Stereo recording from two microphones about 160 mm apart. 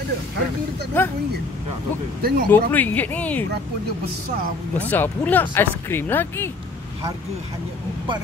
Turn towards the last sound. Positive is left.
turn(degrees=15)  # may be behind; listen again after turning